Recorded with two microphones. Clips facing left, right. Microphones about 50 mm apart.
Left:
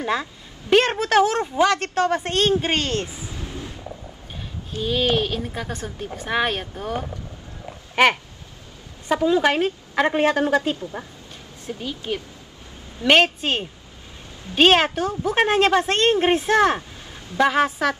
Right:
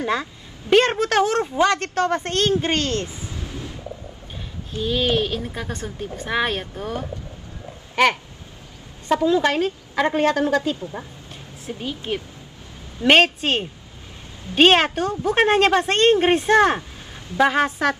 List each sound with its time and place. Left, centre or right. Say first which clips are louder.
0.0 s a woman's voice: right 1 dB; centre
4.8 s a woman's voice: even; centre
7.9 s a sound: left 1 dB; centre
9.1 s a woman's voice: even; centre
11.0 s speech: even; left
11.6 s a woman's voice: right 1 dB; centre